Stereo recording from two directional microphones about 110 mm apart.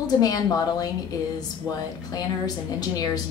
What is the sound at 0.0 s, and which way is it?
Speech, 35° left (ahead or behind).